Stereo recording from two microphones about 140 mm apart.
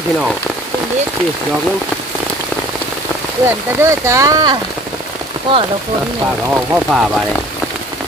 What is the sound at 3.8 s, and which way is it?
Speech, 20° right (ahead or behind).